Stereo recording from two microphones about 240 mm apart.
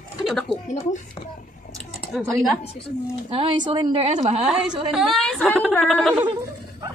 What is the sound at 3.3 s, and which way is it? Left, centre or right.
A woman's voice, right.